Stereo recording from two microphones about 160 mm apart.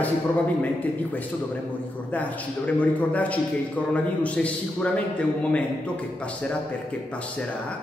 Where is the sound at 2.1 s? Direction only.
10° left (ahead or behind).